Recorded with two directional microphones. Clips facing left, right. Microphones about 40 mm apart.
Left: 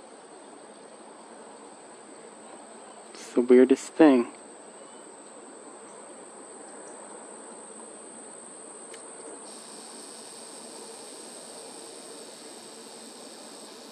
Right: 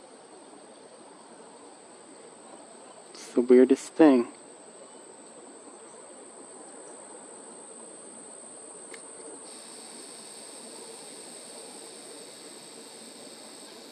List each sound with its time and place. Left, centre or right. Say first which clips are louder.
3.3 s speech: left 1 dB; left
3.7 s speech: left 1 dB; left
4.0 s speech: left 1 dB; left